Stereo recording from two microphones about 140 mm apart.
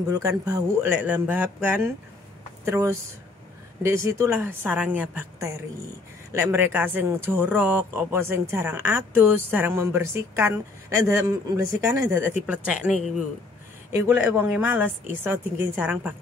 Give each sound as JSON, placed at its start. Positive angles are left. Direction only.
{"t": 0.1, "sound": "speech", "side_deg": -25}
{"t": 0.9, "sound": "speech", "side_deg": -10}
{"t": 12.4, "sound": "speech", "side_deg": -10}